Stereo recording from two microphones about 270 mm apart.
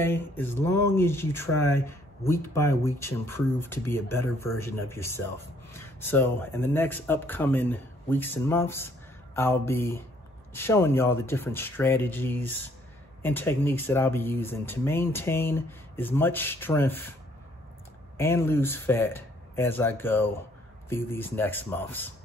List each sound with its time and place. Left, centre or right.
0.0 s speech: centre
18.1 s speech: centre